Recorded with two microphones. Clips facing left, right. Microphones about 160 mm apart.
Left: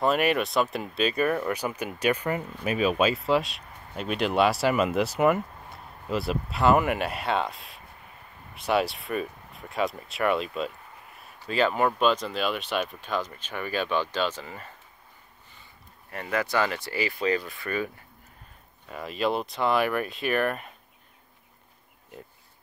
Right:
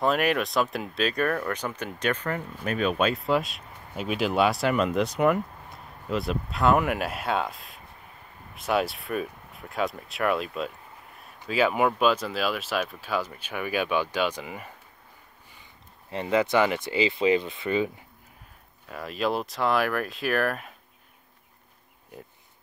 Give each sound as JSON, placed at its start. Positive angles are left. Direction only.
{"t": 0.0, "sound": "speech", "side_deg": 0}
{"t": 16.1, "sound": "speech", "side_deg": -20}
{"t": 18.9, "sound": "speech", "side_deg": 0}